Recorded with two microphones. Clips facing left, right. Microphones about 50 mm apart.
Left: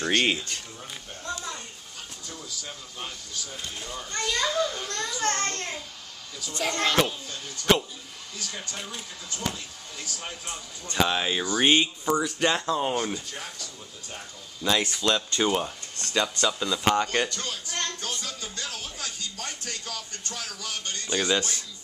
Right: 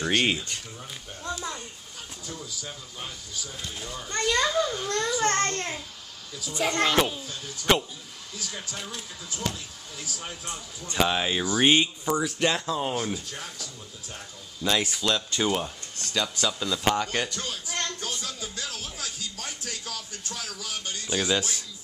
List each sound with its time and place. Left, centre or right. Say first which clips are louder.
0.0 s speech: even; centre
1.2 s a sound: right 1 dB; centre
2.2 s speech: right 2 dB; centre
5.2 s a child's voice: right 1 dB; centre
5.5 s speech: right 2 dB; centre
12.4 s speech: left 1 dB; centre
17.3 s music: even; centre